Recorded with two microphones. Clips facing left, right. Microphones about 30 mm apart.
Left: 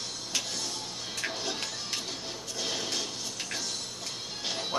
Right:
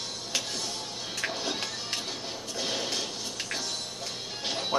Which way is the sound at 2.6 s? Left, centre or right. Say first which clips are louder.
Right 1 dB; centre.